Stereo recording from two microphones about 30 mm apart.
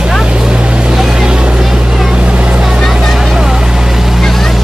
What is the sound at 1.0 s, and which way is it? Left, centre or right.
Vehicle, right.